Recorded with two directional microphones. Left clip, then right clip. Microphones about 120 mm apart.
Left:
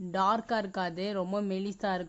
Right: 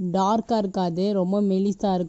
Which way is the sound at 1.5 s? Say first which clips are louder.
Right 9 dB; 25° right (ahead or behind).